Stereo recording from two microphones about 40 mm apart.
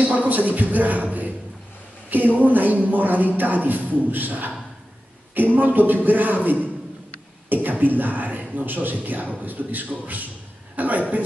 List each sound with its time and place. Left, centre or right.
0.1 s speech: right
5.6 s a man's voice: right